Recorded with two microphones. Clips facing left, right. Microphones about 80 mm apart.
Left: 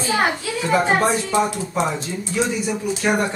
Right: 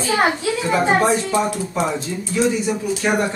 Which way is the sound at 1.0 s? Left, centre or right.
Centre.